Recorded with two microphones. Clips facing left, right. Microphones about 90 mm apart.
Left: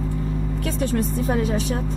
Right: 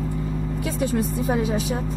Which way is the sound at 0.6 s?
5° right (ahead or behind).